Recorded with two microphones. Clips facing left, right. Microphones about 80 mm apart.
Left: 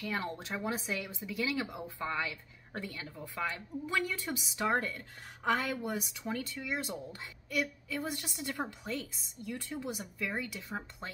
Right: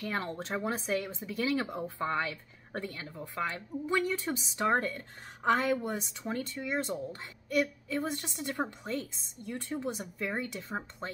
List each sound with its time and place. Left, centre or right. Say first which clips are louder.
0.0 s a woman's voice: right 2 dB; right